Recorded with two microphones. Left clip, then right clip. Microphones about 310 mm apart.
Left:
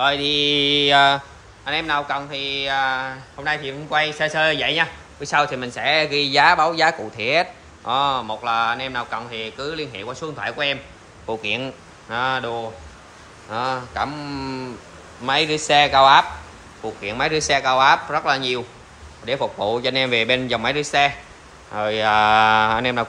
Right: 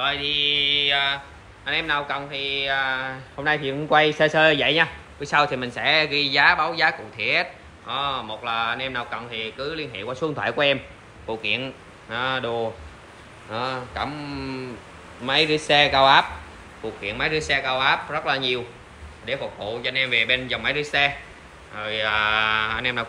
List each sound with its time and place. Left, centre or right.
0.0 s speech: centre
1.7 s speech: centre